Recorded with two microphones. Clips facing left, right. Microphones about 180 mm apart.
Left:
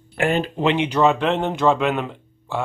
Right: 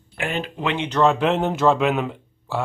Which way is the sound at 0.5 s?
20° left (ahead or behind).